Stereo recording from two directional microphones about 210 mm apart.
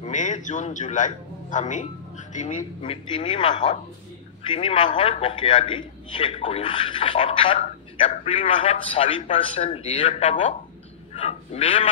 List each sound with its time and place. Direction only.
0.0 s a man's voice: 35° left (ahead or behind)
11.1 s honk: 30° left (ahead or behind)